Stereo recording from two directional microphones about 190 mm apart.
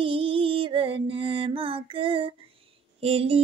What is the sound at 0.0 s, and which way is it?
Music, 30° right (ahead or behind).